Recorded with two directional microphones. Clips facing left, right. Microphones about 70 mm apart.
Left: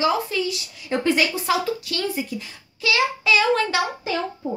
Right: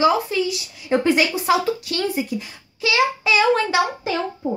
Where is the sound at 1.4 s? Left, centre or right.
Right.